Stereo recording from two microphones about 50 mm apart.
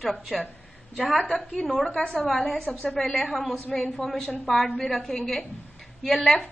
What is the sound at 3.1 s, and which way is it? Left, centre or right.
Speech, left.